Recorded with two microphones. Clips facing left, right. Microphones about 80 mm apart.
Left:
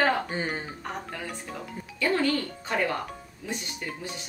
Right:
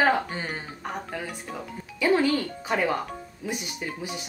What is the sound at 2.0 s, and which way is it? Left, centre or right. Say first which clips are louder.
Speech: right 3 dB; centre.